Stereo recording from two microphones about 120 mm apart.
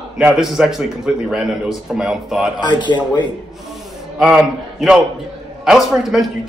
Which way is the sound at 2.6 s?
40° left (ahead or behind).